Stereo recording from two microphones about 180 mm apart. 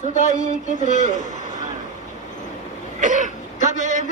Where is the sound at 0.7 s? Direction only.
45° left (ahead or behind).